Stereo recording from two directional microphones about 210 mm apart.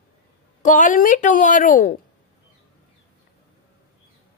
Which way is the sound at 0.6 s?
35° left (ahead or behind).